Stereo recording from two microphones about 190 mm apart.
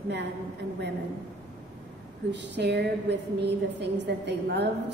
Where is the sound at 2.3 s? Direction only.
65° right (ahead or behind).